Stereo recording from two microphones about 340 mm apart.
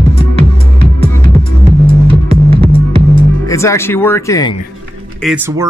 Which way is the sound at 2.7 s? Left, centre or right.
Centre.